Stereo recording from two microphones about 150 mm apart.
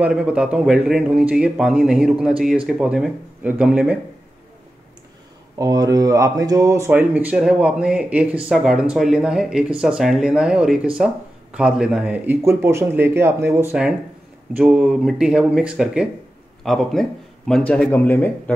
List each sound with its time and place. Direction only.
0.0 s a man's voice: 5° right (ahead or behind)
5.6 s a man's voice: 25° right (ahead or behind); by 18.3 s 10° left (ahead or behind)